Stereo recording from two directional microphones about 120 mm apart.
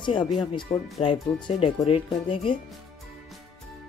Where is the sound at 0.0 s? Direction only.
40° left (ahead or behind).